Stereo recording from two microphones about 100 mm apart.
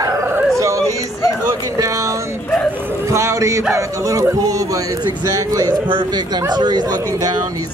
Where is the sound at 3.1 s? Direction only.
30° right (ahead or behind).